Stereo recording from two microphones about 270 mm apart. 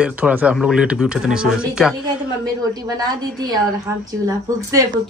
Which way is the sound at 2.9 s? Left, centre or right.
Centre.